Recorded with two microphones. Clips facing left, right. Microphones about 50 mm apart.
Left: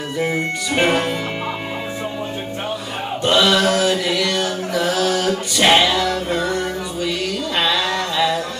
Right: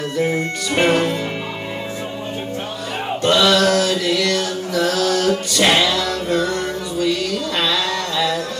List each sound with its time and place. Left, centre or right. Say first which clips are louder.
0.2 s music: even; centre
3.2 s mantra: right 1 dB; centre
5.6 s music: left 3 dB; centre